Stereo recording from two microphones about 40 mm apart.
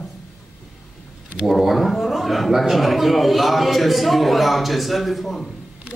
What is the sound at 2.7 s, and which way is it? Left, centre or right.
A man's voice, centre.